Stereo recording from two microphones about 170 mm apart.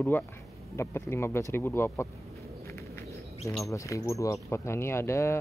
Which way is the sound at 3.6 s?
20° left (ahead or behind).